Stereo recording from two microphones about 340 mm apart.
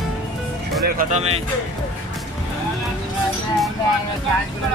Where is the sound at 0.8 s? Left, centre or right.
Right.